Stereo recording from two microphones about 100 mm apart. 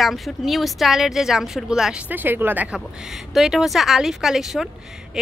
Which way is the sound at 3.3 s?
5° right (ahead or behind).